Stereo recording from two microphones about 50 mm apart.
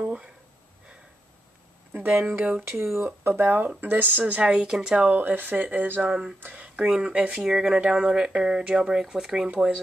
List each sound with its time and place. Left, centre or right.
0.0 s a woman's voice: right
2.0 s speech: right
2.7 s speech: right
3.3 s speech: right
4.2 s a woman's voice: right
5.1 s speech: right
6.6 s speech: right